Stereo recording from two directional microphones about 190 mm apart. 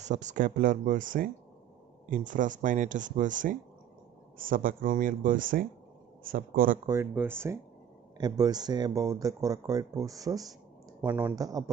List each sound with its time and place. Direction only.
0.0 s speech: 40° right (ahead or behind)
6.9 s speech: 10° right (ahead or behind)